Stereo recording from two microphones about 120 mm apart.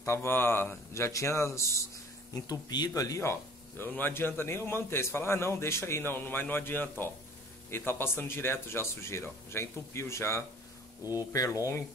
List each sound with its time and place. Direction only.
0.0 s speech: 25° left (ahead or behind)